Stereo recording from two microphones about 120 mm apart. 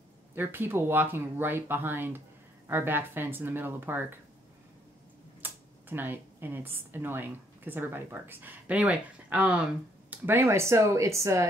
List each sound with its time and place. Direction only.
0.3 s speech: 15° right (ahead or behind)
5.4 s speech: 15° right (ahead or behind)